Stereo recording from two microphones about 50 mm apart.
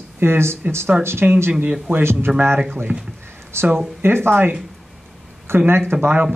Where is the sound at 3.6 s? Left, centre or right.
Right.